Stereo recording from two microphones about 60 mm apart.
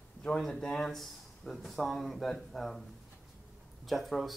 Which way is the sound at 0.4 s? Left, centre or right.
Centre.